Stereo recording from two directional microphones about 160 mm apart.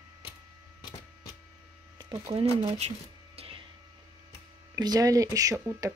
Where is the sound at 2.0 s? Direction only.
25° right (ahead or behind).